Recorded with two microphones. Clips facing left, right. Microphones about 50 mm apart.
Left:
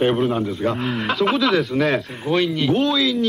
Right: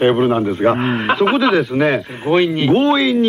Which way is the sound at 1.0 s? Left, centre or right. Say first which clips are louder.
Right 4 dB; centre.